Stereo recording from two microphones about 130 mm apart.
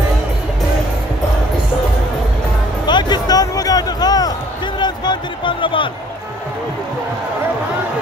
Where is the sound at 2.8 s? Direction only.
35° left (ahead or behind).